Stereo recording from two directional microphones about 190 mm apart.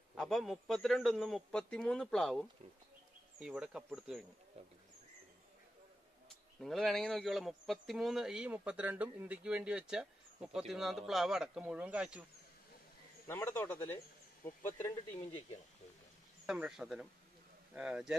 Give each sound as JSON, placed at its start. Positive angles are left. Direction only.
{"t": 0.1, "sound": "speech", "side_deg": 0}
{"t": 4.6, "sound": "speech", "side_deg": -30}
{"t": 6.6, "sound": "speech", "side_deg": 0}
{"t": 13.3, "sound": "speech", "side_deg": 10}
{"t": 16.4, "sound": "speech", "side_deg": -5}